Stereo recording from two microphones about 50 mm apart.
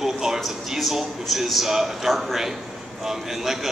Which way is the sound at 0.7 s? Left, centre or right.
Centre.